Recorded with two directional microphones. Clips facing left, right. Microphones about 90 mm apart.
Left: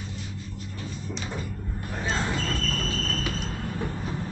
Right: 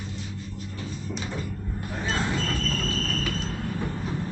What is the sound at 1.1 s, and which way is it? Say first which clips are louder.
Door: right 2 dB; centre (ahead or behind).